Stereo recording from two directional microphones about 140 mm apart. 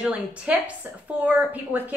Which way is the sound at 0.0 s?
10° right (ahead or behind).